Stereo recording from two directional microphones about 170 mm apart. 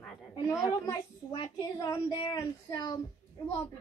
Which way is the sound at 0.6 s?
20° left (ahead or behind).